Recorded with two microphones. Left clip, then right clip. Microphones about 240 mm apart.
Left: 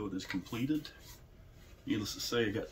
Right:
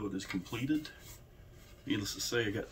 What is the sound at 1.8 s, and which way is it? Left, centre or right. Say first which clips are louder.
Speech: even; centre.